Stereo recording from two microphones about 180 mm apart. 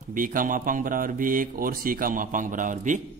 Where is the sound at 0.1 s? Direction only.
50° right (ahead or behind).